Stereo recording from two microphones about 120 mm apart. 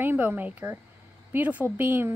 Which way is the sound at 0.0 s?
15° right (ahead or behind).